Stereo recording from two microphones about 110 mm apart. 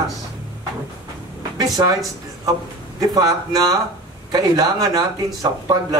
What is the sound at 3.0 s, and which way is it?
Speech, 35° right (ahead or behind).